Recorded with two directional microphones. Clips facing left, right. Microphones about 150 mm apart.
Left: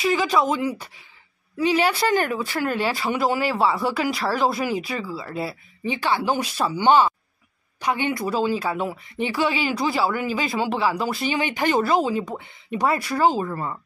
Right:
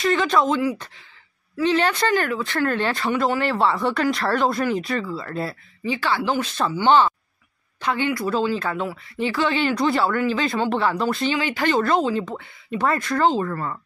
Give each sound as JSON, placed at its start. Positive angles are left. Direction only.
{"t": 0.0, "sound": "speech", "side_deg": 5}
{"t": 1.6, "sound": "speech", "side_deg": 10}
{"t": 2.1, "sound": "speech", "side_deg": 20}
{"t": 5.9, "sound": "speech", "side_deg": 20}
{"t": 11.2, "sound": "speech", "side_deg": 20}